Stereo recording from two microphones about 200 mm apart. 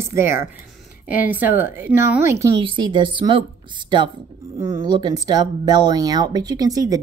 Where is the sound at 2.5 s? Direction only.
25° right (ahead or behind).